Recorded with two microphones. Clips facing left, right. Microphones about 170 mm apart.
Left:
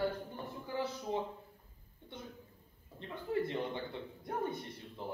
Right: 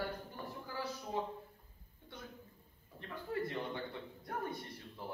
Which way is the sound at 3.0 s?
20° left (ahead or behind).